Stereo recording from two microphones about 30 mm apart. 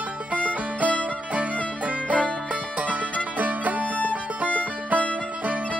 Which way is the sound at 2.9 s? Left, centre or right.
Right.